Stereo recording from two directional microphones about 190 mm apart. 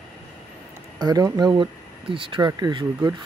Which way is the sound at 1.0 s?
20° right (ahead or behind).